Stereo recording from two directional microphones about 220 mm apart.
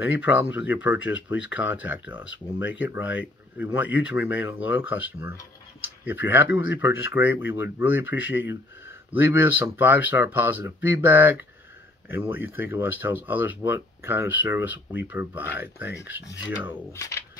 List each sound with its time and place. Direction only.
0.1 s speech: 5° right (ahead or behind)
0.9 s speech: 60° left (ahead or behind)
1.9 s speech: 5° right (ahead or behind)
6.0 s speech: 10° right (ahead or behind)
16.9 s speech: 15° left (ahead or behind)